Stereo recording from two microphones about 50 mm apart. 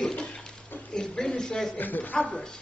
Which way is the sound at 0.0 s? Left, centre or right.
Centre.